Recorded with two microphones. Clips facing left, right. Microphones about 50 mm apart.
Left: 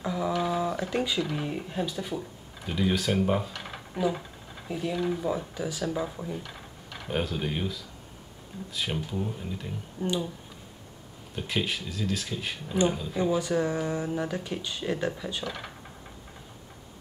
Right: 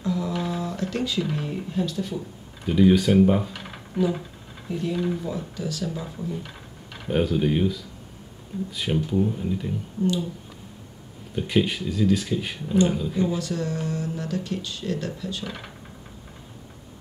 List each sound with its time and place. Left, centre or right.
0.0 s a sound: left
0.3 s a sound: centre
0.6 s a sound: centre
1.3 s speech: centre
2.6 s speech: centre
5.2 s speech: centre
6.4 s speech: centre
11.3 s speech: centre
13.1 s speech: centre
15.4 s speech: centre